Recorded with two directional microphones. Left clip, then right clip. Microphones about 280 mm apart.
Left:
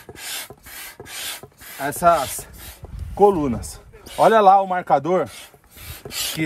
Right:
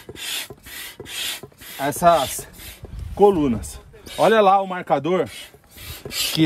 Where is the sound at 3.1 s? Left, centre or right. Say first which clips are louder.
Even; centre.